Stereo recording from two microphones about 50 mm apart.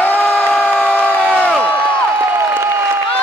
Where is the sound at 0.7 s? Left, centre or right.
Left.